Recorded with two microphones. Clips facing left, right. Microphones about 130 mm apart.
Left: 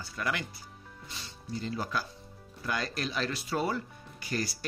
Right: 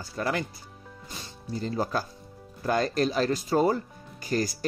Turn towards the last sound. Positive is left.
turn(degrees=-40)  # may be behind; listen again after turning